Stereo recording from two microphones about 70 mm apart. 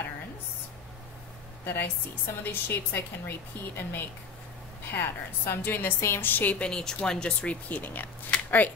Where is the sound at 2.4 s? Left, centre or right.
Left; by 7.5 s centre.